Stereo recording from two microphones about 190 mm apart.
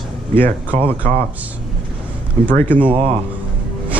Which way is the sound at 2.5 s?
10° left (ahead or behind).